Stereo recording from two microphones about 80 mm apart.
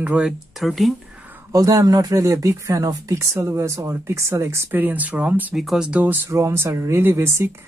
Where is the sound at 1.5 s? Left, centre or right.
Right.